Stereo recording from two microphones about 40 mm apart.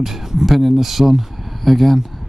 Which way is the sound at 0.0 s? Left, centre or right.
Centre.